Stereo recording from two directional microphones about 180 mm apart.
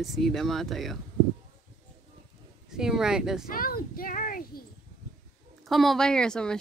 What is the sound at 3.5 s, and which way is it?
A child's voice, 55° left (ahead or behind).